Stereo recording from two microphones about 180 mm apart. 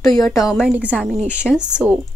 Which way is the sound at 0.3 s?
Centre (ahead or behind).